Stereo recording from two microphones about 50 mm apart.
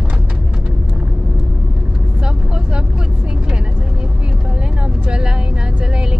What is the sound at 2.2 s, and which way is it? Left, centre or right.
Vehicle, centre.